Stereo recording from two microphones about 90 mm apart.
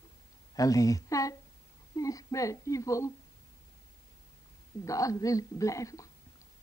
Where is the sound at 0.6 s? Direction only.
40° left (ahead or behind).